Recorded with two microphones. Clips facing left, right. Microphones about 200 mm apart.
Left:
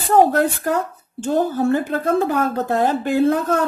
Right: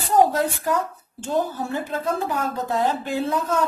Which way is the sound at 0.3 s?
60° left (ahead or behind).